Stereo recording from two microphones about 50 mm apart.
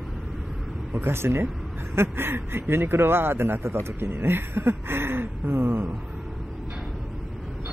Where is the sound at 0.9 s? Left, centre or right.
Right.